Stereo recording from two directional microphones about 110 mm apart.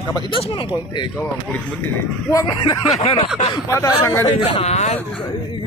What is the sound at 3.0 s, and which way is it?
Speech, 55° left (ahead or behind).